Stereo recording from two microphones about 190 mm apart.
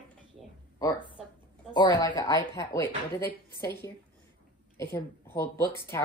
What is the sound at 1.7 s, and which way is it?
Speech, 25° left (ahead or behind).